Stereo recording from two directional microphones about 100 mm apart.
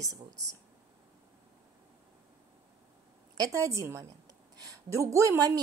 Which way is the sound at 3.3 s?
35° right (ahead or behind).